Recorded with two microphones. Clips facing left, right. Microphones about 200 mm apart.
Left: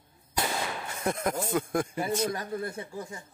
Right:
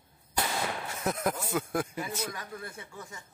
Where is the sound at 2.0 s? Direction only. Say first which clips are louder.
Left 7 dB; 30° left (ahead or behind).